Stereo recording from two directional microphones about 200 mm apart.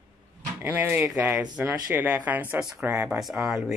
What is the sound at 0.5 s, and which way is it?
Speech, 10° right (ahead or behind).